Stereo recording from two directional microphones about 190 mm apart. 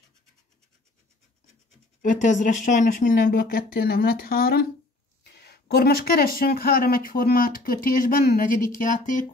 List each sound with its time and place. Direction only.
2.0 s speech: 40° left (ahead or behind)